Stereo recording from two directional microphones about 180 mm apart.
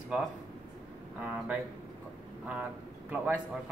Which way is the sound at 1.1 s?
10° right (ahead or behind).